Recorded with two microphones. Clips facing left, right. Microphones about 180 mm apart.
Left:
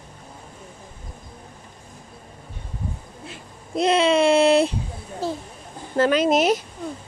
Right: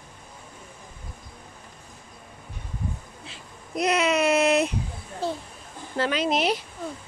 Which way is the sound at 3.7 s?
30° left (ahead or behind).